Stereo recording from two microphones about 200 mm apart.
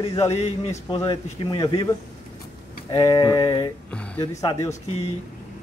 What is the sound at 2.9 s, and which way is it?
Speech, 20° left (ahead or behind).